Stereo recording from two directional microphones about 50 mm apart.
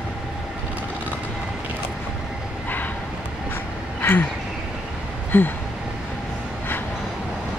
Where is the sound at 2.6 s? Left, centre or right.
Left.